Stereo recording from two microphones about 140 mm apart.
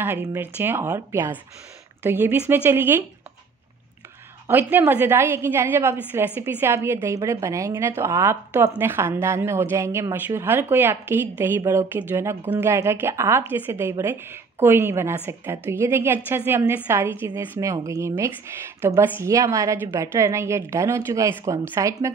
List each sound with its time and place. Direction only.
0.4 s a woman's voice: 15° right (ahead or behind)
4.5 s a woman's voice: 15° right (ahead or behind)